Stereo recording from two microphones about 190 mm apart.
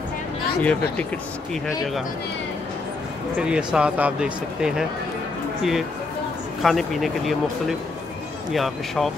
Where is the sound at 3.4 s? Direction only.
5° right (ahead or behind).